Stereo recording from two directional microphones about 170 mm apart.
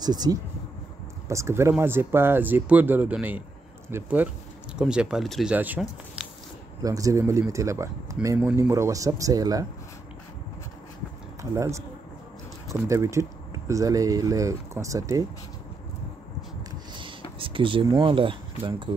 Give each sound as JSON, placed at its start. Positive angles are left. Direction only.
{"t": 0.0, "sound": "speech", "side_deg": -25}
{"t": 6.8, "sound": "speech", "side_deg": -20}
{"t": 11.5, "sound": "speech", "side_deg": -15}
{"t": 17.4, "sound": "speech", "side_deg": -30}